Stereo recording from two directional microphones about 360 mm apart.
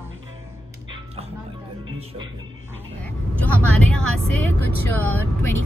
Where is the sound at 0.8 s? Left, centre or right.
Centre.